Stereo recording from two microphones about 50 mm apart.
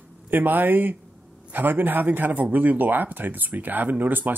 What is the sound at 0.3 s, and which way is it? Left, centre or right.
Speech, right.